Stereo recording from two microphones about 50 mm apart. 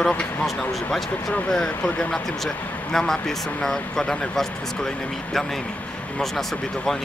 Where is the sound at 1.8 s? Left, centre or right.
Left.